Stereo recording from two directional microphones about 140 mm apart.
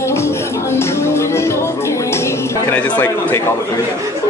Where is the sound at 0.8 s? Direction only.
20° left (ahead or behind).